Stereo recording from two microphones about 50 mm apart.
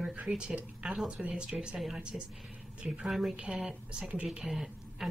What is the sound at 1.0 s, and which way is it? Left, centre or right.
Speech, right.